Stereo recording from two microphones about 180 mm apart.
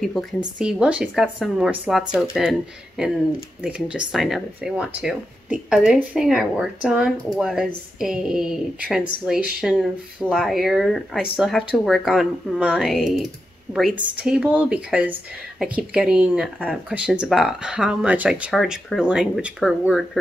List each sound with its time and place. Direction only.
0.0 s speech: centre (ahead or behind)
3.6 s speech: 5° right (ahead or behind)